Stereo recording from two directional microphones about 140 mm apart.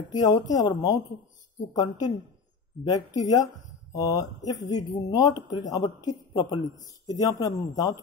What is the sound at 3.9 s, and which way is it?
A man's voice, 25° left (ahead or behind).